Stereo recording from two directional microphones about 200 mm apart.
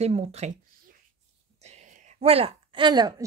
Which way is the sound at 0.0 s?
30° right (ahead or behind).